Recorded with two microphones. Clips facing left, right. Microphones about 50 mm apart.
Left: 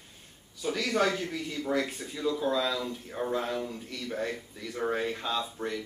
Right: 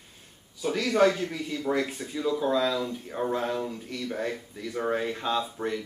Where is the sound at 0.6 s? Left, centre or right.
Centre.